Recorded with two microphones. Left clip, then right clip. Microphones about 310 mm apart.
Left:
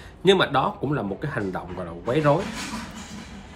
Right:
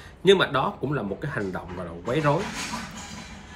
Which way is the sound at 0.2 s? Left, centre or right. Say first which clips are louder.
Left 1 dB; centre.